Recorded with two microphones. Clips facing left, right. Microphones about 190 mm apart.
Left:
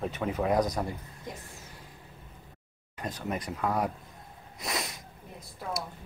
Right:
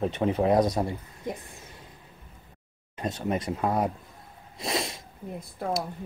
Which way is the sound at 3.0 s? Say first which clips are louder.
Right 5 dB; 25° right (ahead or behind).